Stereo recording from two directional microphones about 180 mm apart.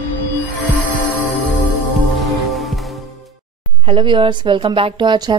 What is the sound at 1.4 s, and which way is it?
Music, centre (ahead or behind).